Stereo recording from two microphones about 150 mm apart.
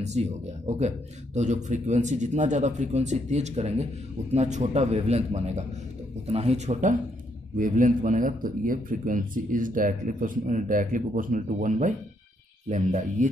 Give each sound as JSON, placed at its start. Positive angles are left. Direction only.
{"t": 0.0, "sound": "a man's voice", "side_deg": -50}
{"t": 7.5, "sound": "speech", "side_deg": -65}